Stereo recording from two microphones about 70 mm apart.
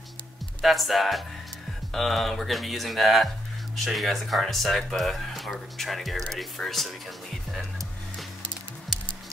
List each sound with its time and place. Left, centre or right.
0.6 s speech: centre